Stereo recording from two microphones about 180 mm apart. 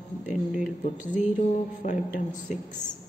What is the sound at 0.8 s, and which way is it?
A woman's voice, 45° left (ahead or behind).